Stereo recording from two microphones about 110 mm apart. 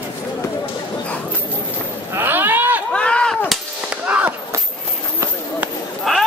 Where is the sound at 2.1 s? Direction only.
20° right (ahead or behind).